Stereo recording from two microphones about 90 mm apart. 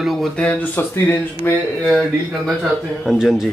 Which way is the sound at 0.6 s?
25° left (ahead or behind).